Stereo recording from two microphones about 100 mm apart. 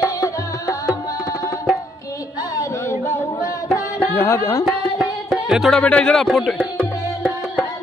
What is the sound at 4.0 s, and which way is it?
Music, 25° left (ahead or behind).